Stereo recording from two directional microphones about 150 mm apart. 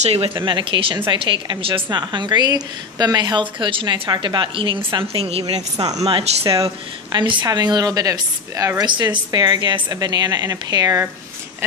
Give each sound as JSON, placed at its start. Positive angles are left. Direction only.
{"t": 0.0, "sound": "a woman's voice", "side_deg": -40}
{"t": 5.8, "sound": "speech", "side_deg": -25}